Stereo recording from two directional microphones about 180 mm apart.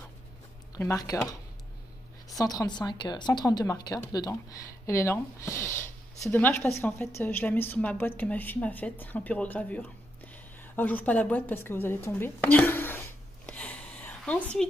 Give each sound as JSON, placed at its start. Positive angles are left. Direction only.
{"t": 0.7, "sound": "a woman's voice", "side_deg": 15}
{"t": 2.4, "sound": "a woman's voice", "side_deg": 20}
{"t": 13.5, "sound": "a sound", "side_deg": 5}